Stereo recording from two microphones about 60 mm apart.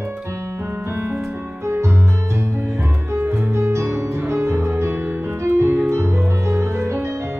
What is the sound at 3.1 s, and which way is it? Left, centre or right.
Music, right.